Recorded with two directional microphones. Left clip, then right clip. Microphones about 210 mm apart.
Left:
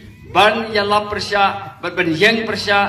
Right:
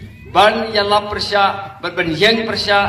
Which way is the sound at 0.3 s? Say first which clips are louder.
Right 1 dB; 15° right (ahead or behind).